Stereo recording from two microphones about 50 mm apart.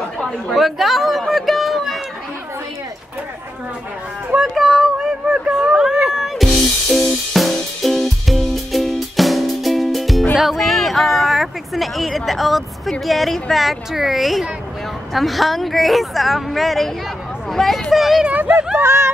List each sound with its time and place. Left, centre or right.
0.2 s chatter: centre
1.2 s a sound: centre
4.6 s a sound: centre
5.4 s music: centre
10.3 s a sound: centre
13.0 s speech: centre
17.9 s speech: centre
18.3 s speech: right
18.8 s speech: right